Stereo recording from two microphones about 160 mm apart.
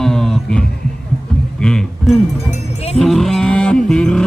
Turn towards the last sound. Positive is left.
turn(degrees=5)  # may be behind; listen again after turning